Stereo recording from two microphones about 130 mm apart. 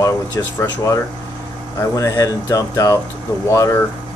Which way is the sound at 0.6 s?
25° left (ahead or behind).